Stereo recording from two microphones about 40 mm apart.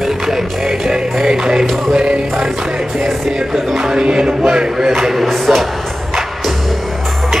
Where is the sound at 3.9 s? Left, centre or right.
Right.